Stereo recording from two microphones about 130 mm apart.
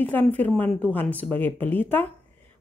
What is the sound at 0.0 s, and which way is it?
Speech, 15° left (ahead or behind).